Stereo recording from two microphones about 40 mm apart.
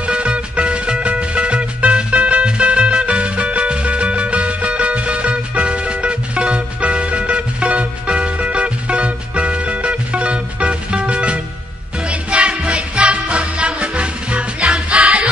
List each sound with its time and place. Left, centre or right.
0.0 s music: right